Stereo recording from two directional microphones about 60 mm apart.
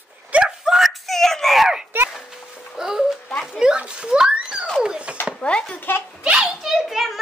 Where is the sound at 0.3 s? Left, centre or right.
Centre.